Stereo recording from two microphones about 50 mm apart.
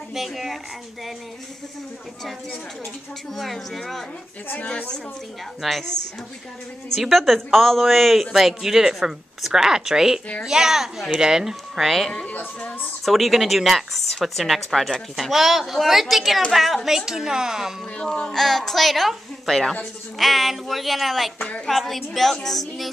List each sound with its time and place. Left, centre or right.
0.1 s a woman's voice: centre
3.3 s a woman's voice: centre
4.6 s a woman's voice: left
5.6 s a woman's voice: centre
7.0 s a woman's voice: centre
12.3 s a woman's voice: left
13.0 s a woman's voice: centre
18.0 s speech: centre
18.3 s a woman's voice: centre